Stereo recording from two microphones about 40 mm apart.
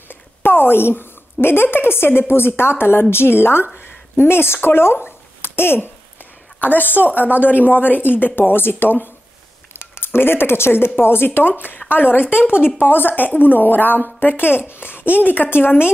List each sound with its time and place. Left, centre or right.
0.1 s a woman's voice: left
3.7 s speech: left
5.0 s dog: left
6.6 s a woman's voice: left
8.4 s speech: left
9.8 s a woman's voice: left
12.4 s speech: right
12.7 s a woman's voice: left
14.2 s a woman's voice: left